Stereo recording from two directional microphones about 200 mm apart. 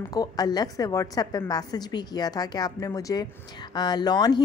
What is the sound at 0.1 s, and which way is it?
A woman's voice, 20° left (ahead or behind).